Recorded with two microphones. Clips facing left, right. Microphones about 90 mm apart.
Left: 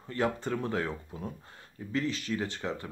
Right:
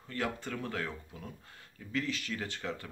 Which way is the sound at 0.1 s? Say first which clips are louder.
Left 6 dB; 30° left (ahead or behind).